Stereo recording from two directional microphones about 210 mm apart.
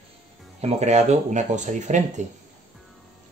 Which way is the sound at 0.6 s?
35° right (ahead or behind).